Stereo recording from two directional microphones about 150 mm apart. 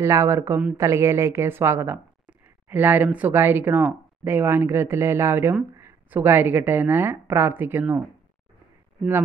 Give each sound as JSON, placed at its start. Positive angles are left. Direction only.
{"t": 0.0, "sound": "a woman's voice", "side_deg": -20}